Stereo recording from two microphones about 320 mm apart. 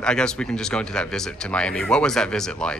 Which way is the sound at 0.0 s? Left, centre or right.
Centre.